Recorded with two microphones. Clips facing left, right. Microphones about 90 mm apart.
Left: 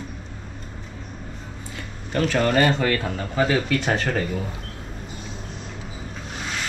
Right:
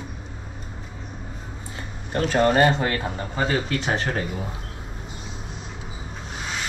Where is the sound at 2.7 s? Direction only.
15° right (ahead or behind).